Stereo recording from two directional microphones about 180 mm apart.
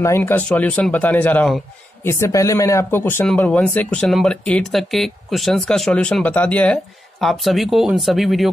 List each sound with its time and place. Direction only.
0.0 s speech: 15° left (ahead or behind)